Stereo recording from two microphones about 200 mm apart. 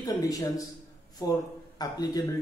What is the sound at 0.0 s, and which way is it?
Speech, 20° left (ahead or behind).